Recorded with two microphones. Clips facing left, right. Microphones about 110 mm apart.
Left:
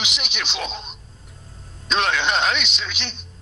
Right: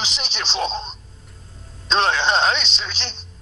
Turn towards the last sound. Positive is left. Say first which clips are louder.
# even
turn(degrees=-30)  # may be behind; listen again after turning